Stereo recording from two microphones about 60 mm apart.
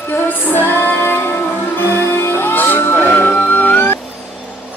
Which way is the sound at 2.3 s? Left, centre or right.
Left.